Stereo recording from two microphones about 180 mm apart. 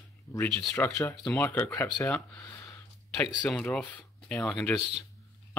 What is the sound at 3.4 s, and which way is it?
Speech, 5° left (ahead or behind).